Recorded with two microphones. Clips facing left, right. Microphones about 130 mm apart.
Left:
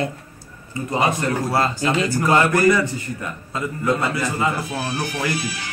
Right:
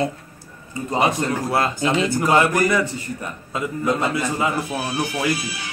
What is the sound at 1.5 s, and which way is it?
A man's voice, 15° right (ahead or behind).